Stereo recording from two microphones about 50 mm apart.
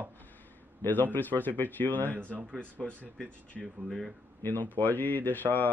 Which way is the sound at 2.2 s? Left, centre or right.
Right.